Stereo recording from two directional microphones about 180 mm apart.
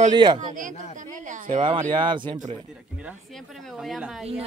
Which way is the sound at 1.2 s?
45° right (ahead or behind).